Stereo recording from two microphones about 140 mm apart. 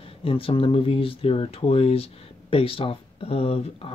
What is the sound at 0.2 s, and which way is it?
Speech, 40° left (ahead or behind).